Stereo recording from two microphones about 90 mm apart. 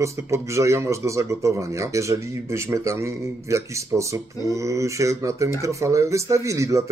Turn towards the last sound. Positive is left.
turn(degrees=-35)  # may be behind; listen again after turning